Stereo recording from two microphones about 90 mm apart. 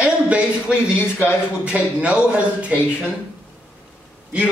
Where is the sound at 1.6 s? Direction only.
15° right (ahead or behind).